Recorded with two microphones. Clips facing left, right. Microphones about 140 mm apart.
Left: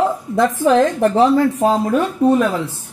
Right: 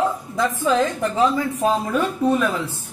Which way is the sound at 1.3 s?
40° left (ahead or behind).